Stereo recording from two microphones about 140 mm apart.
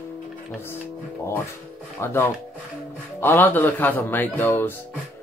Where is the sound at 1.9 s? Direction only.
15° left (ahead or behind).